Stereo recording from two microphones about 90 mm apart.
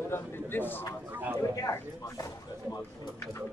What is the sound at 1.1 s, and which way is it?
Speech, 25° right (ahead or behind).